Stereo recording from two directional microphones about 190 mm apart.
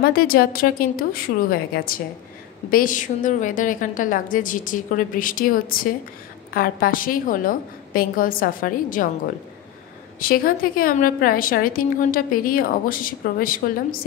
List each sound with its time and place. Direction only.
0.0 s a woman's voice: 50° left (ahead or behind)
10.2 s a woman's voice: 50° left (ahead or behind)